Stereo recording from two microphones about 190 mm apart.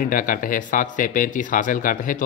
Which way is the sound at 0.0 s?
45° left (ahead or behind).